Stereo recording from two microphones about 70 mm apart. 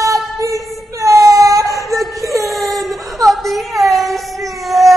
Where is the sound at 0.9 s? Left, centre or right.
Right.